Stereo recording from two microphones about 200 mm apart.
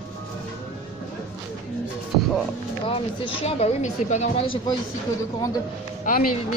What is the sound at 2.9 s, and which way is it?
Speech, 25° left (ahead or behind).